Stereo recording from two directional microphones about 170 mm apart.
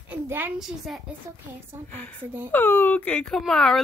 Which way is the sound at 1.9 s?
10° left (ahead or behind).